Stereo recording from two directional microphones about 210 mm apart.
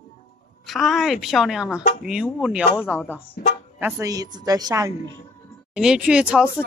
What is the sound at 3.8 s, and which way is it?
A woman's voice, 10° right (ahead or behind).